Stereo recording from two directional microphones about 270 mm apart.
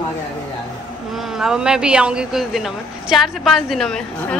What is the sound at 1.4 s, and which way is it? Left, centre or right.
A woman's voice, centre.